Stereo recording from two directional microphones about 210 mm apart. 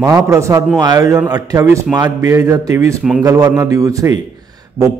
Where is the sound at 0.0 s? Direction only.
15° right (ahead or behind).